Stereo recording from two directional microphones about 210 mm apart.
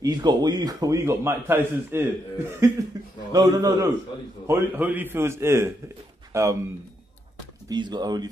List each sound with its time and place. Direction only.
0.0 s a man's voice: 20° right (ahead or behind)
7.7 s speech: 20° right (ahead or behind)